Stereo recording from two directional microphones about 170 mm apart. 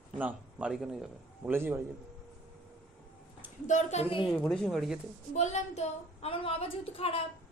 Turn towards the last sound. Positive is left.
turn(degrees=35)  # may be behind; listen again after turning